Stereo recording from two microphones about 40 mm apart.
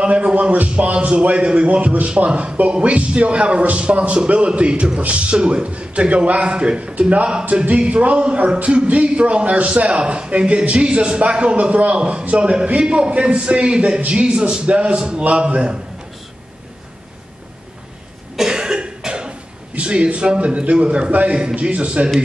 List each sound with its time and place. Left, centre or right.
0.0 s a man's voice: right
18.3 s cough: centre
19.7 s a man's voice: right